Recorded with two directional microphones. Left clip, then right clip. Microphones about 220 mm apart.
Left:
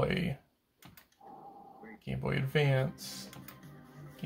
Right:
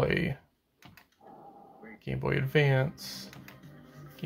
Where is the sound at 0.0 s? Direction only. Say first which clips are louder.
Right 4 dB; 40° right (ahead or behind).